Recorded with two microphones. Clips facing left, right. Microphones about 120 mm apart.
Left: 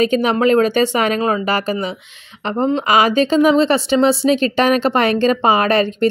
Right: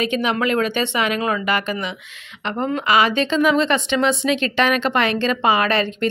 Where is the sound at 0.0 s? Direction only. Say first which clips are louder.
Left 6 dB; 40° left (ahead or behind).